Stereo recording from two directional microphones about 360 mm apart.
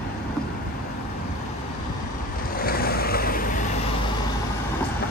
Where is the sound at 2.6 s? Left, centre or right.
Left.